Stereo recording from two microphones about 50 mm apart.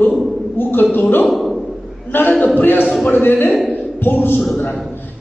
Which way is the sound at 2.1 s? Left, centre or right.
Left.